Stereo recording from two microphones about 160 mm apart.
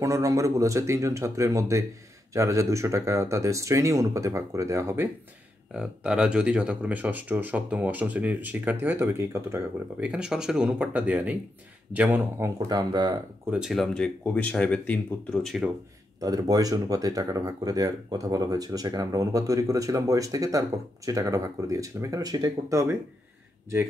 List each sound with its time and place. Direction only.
0.0 s speech: 20° right (ahead or behind)
5.7 s speech: 5° right (ahead or behind); by 13.2 s 25° right (ahead or behind)
13.5 s speech: 5° right (ahead or behind)
15.4 s speech: 5° right (ahead or behind)
16.2 s speech: 25° right (ahead or behind)